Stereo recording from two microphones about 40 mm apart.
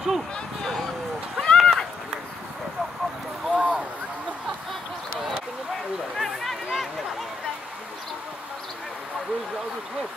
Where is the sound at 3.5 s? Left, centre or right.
Right.